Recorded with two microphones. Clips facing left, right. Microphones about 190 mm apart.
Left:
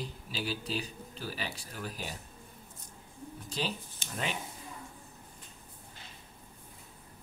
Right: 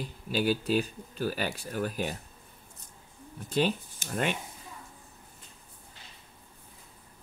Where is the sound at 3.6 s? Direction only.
55° right (ahead or behind).